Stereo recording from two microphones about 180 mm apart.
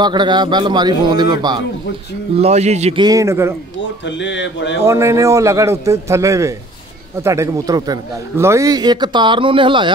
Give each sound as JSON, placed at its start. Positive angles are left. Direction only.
{"t": 0.0, "sound": "a man's voice", "side_deg": -25}
{"t": 2.3, "sound": "speech", "side_deg": -35}
{"t": 3.0, "sound": "a man's voice", "side_deg": -20}
{"t": 4.0, "sound": "speech", "side_deg": 80}
{"t": 4.8, "sound": "a man's voice", "side_deg": -15}